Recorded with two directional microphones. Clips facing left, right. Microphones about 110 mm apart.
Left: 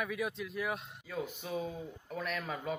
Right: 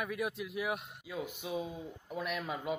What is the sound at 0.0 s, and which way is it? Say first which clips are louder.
A man's voice: even; 5° right (ahead or behind).